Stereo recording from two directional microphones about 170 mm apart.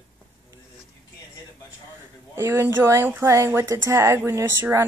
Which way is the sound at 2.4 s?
15° right (ahead or behind).